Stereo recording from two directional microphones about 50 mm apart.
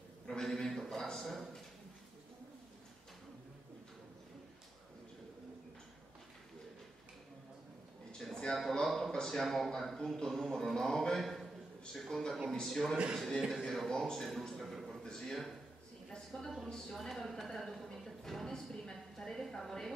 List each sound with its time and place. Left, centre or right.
0.3 s a man's voice: centre
8.2 s a sound: centre
9.1 s a man's voice: centre
12.9 s a man's voice: centre
13.8 s a man's voice: centre